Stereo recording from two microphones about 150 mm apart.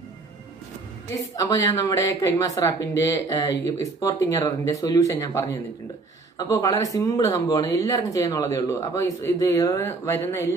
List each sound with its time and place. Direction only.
1.4 s speech: 25° left (ahead or behind)